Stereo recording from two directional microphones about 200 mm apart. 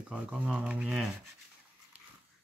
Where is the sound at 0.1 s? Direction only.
5° right (ahead or behind).